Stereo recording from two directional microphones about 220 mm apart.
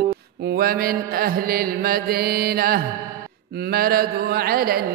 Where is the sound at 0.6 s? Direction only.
45° right (ahead or behind).